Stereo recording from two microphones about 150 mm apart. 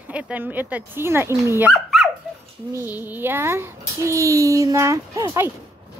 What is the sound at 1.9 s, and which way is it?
Dog, centre (ahead or behind).